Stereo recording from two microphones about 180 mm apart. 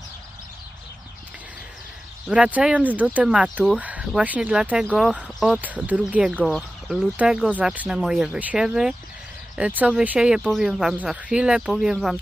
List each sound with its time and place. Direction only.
2.2 s speech: 5° right (ahead or behind)